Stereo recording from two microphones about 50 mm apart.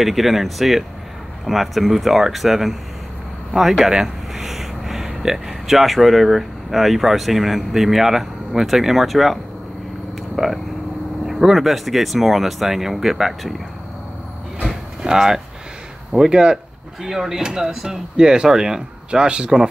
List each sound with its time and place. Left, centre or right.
0.0 s speech: centre
15.0 s speech: centre